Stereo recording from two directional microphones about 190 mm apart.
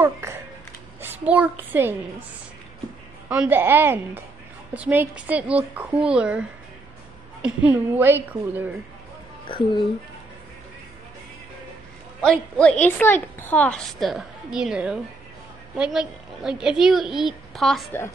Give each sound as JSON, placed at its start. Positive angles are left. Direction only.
{"t": 0.0, "sound": "a sound", "side_deg": -15}
{"t": 1.2, "sound": "a woman's voice", "side_deg": -5}
{"t": 3.3, "sound": "a woman's voice", "side_deg": -10}
{"t": 7.4, "sound": "a woman's voice", "side_deg": -10}
{"t": 12.2, "sound": "a woman's voice", "side_deg": 5}